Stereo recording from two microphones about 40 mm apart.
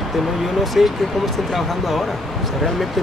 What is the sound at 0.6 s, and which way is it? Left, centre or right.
Speech, centre.